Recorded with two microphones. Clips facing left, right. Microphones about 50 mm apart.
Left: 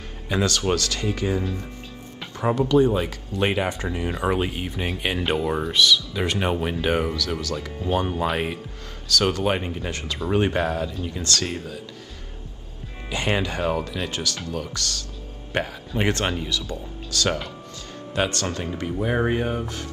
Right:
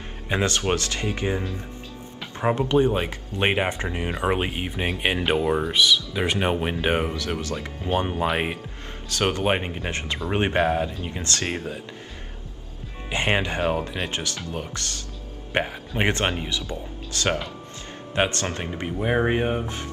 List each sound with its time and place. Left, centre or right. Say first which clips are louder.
0.3 s speech: left 1 dB; right
2.3 s music: even; right
2.7 s speech: left 4 dB; right
8.1 s speech: even; centre
9.1 s speech: left 1 dB; right
13.1 s speech: right 1 dB; right